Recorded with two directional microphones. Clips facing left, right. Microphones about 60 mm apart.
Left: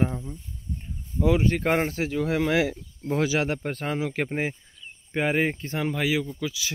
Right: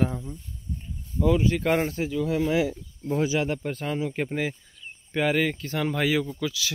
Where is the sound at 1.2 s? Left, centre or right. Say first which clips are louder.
Even; left.